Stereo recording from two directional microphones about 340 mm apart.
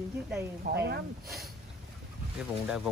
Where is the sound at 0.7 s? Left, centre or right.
Right.